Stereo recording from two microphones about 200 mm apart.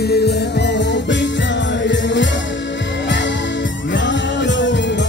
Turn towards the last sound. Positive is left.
turn(degrees=60)  # may be behind; listen again after turning